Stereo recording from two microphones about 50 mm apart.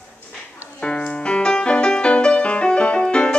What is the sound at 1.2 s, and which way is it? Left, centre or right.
Music, centre.